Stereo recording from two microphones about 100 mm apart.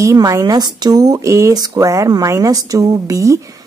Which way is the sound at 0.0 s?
30° right (ahead or behind).